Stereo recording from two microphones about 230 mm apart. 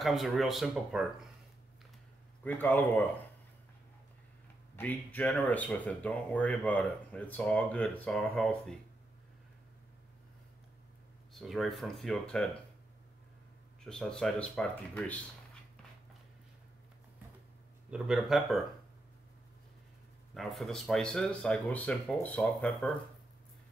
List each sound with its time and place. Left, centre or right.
0.0 s speech: centre
2.4 s speech: centre
4.7 s speech: centre
11.3 s speech: centre
13.8 s speech: centre
17.9 s speech: centre
20.3 s speech: centre